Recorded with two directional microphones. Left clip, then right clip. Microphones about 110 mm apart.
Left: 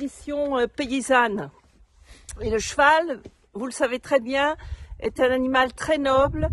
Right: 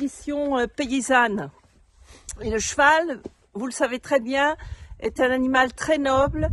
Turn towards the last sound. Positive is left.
turn(degrees=50)  # may be behind; listen again after turning